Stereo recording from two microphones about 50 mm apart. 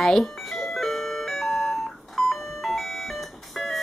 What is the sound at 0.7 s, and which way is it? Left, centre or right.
Doorbell, centre.